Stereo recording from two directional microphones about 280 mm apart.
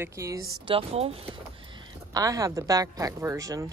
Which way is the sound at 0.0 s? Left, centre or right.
Centre.